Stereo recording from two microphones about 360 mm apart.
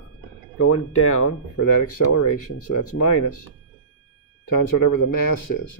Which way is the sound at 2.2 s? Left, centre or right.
Left.